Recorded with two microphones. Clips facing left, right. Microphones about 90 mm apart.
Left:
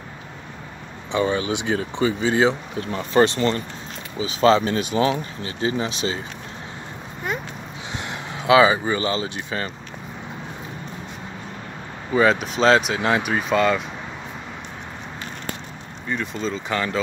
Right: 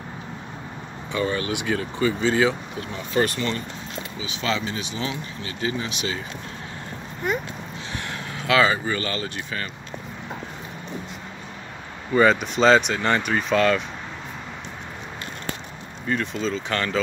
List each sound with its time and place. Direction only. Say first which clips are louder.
1.1 s speech: left 3 dB; 20° left (ahead or behind)
3.1 s speech: left 5 dB; 35° left (ahead or behind)
5.4 s speech: even; 30° left (ahead or behind)
7.2 s speech: right 2 dB; centre (ahead or behind)
8.1 s speech: left 6 dB; 20° left (ahead or behind)
12.1 s speech: even; centre (ahead or behind)
16.1 s speech: right 1 dB; 5° left (ahead or behind)